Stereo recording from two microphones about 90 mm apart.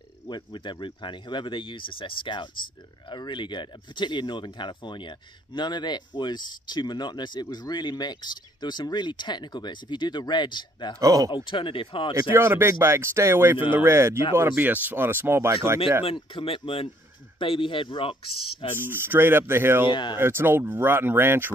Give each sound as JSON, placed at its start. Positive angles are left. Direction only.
{"t": 0.3, "sound": "speech", "side_deg": 60}
{"t": 11.0, "sound": "speech", "side_deg": -40}
{"t": 11.2, "sound": "speech", "side_deg": 65}
{"t": 12.3, "sound": "speech", "side_deg": -25}
{"t": 16.0, "sound": "speech", "side_deg": 90}
{"t": 18.8, "sound": "speech", "side_deg": -25}
{"t": 19.9, "sound": "speech", "side_deg": 60}
{"t": 20.2, "sound": "speech", "side_deg": -25}